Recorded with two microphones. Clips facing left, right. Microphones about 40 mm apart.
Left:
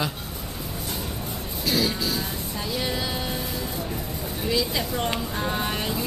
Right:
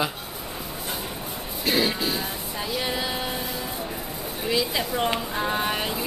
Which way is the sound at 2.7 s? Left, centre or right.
Centre.